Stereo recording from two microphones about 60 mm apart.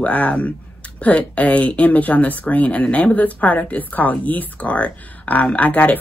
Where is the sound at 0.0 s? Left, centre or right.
Left.